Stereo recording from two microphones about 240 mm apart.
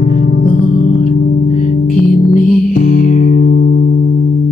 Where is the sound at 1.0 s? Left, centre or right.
Left.